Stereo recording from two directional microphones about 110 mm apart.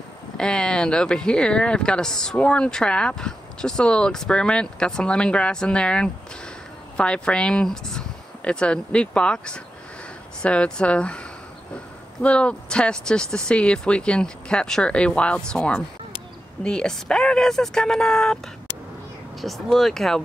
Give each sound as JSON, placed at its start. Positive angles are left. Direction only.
{"t": 0.4, "sound": "speech", "side_deg": 10}
{"t": 19.4, "sound": "speech", "side_deg": 0}